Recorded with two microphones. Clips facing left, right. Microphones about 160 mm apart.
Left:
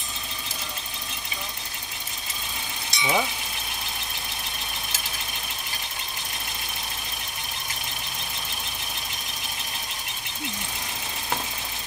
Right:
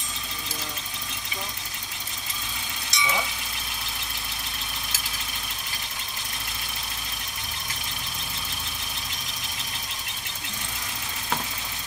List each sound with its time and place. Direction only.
2.9 s vehicle: 30° left (ahead or behind)